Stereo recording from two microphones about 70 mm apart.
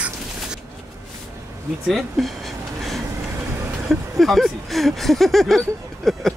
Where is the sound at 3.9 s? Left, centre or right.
Centre.